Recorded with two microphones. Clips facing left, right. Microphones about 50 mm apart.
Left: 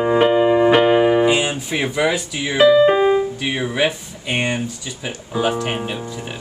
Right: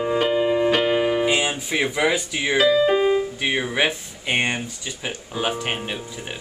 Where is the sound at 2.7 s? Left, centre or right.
Left.